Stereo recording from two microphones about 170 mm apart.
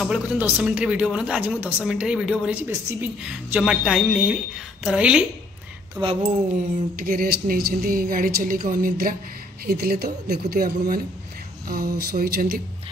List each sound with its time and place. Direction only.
0.0 s a woman's voice: 5° right (ahead or behind)
6.0 s speech: 20° right (ahead or behind)
7.0 s a woman's voice: 60° right (ahead or behind)